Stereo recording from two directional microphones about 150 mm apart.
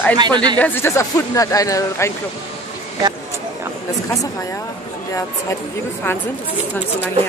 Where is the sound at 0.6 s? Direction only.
15° left (ahead or behind).